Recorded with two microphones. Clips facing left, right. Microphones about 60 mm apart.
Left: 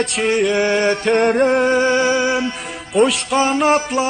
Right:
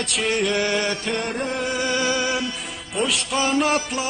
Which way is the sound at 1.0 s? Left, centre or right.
Left.